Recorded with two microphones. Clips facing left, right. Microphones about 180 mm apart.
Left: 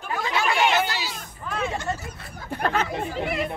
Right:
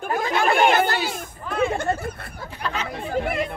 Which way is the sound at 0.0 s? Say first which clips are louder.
Right 4 dB; 50° right (ahead or behind).